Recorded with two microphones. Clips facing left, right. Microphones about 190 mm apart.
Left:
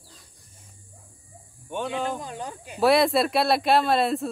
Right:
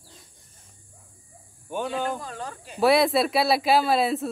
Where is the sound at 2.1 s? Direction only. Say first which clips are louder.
Left 1 dB; 15° left (ahead or behind).